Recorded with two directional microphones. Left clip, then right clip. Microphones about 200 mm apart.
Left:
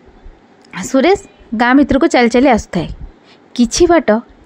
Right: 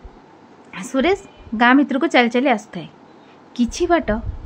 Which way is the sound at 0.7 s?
25° left (ahead or behind).